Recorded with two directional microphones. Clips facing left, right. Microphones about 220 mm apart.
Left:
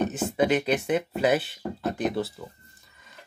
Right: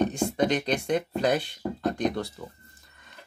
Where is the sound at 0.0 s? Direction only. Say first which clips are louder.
Even; 5° left (ahead or behind).